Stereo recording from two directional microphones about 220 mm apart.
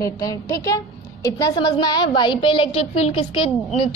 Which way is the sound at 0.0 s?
15° left (ahead or behind).